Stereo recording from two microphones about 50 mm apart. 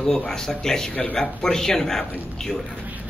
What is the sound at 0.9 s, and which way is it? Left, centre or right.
Speech, left.